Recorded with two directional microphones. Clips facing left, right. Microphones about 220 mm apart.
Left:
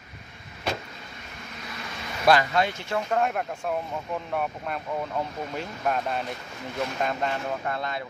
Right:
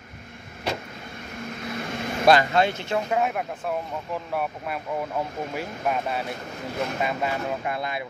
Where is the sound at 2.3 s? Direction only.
30° right (ahead or behind).